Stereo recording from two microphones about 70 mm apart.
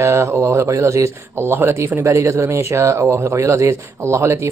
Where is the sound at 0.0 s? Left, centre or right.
Right.